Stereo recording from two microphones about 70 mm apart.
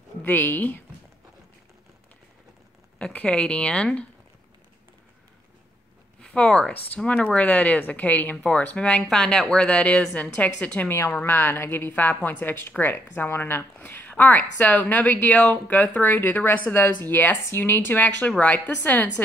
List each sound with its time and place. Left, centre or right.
0.2 s speech: left
3.0 s a woman's voice: centre
6.3 s a woman's voice: centre
10.9 s speech: left
11.9 s speech: left